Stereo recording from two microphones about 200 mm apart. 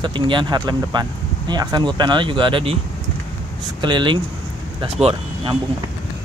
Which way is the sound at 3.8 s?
20° right (ahead or behind).